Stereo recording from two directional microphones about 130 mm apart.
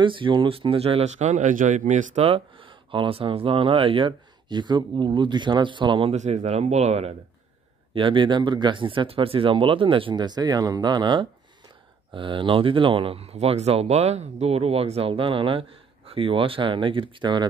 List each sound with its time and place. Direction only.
0.0 s speech: 40° right (ahead or behind); by 2.2 s 75° right (ahead or behind)
2.2 s speech: 45° right (ahead or behind)
6.1 s speech: 60° right (ahead or behind)
7.9 s speech: 40° right (ahead or behind)